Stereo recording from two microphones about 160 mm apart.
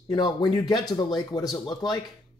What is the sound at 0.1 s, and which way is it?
Speech, 25° left (ahead or behind).